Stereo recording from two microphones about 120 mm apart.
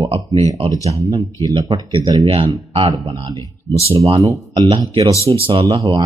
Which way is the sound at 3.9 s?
55° right (ahead or behind).